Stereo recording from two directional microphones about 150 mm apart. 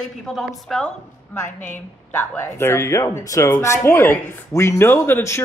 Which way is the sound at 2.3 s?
15° left (ahead or behind).